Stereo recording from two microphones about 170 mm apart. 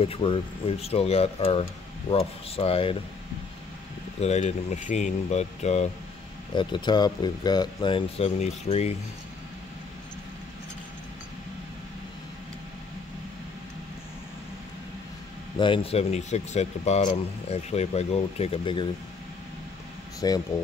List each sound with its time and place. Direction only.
0.0 s speech: 35° left (ahead or behind)
4.2 s speech: 40° left (ahead or behind)
6.5 s speech: 25° left (ahead or behind)
15.6 s speech: 30° left (ahead or behind)
20.2 s speech: 20° left (ahead or behind)